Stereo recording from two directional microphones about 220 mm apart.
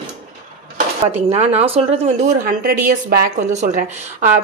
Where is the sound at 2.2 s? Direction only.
40° right (ahead or behind).